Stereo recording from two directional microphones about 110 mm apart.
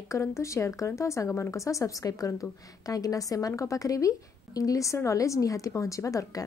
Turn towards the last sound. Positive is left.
turn(degrees=30)  # may be behind; listen again after turning